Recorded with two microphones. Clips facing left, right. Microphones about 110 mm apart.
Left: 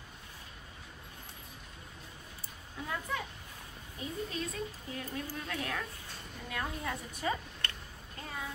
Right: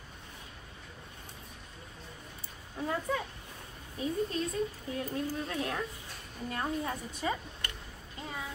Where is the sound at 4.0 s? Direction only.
35° right (ahead or behind).